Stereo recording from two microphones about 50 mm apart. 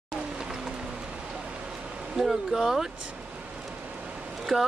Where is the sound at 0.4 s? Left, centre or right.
Centre.